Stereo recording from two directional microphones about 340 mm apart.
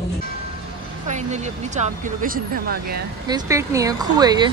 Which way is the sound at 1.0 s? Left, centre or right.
Centre.